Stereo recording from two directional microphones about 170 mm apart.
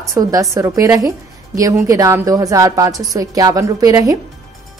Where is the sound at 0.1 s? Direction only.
20° right (ahead or behind).